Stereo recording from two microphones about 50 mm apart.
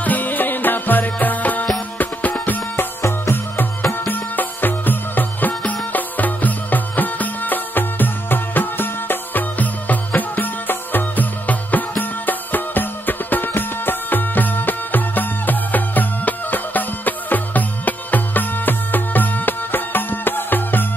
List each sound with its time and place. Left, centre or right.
0.0 s music: left
2.7 s music: left
4.1 s music: left
5.5 s music: left
5.9 s music: left